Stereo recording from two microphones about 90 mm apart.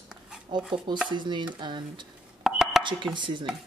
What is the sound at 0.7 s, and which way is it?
Speech, 65° right (ahead or behind).